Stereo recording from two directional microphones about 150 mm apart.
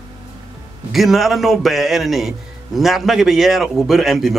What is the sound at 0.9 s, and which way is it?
A man's voice, centre (ahead or behind).